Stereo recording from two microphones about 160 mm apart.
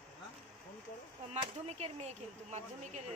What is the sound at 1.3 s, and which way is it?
Speech, 40° right (ahead or behind).